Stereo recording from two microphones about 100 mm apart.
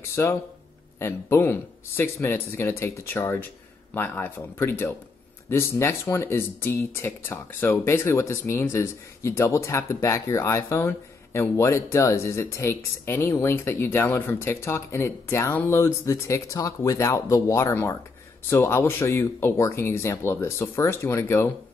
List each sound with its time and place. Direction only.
0.1 s speech: 25° left (ahead or behind)